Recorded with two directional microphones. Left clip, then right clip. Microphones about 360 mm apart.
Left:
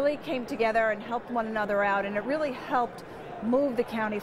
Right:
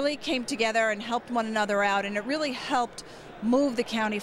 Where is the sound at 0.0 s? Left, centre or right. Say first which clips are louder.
Even; centre.